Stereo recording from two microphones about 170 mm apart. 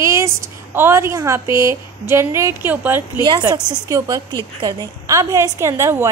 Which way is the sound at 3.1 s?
25° right (ahead or behind).